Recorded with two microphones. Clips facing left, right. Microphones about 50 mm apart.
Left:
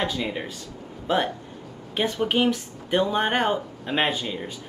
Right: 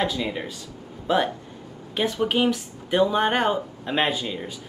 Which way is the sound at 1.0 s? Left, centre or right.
Centre.